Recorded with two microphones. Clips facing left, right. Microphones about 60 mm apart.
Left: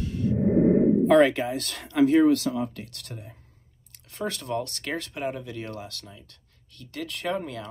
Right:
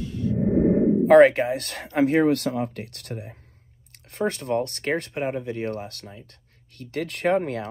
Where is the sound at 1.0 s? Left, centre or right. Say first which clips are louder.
Right 9 dB; right.